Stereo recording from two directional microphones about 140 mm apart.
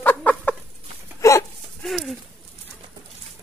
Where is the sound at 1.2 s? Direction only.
20° left (ahead or behind).